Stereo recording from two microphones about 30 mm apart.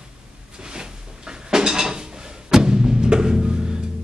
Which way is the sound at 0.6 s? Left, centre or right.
Right.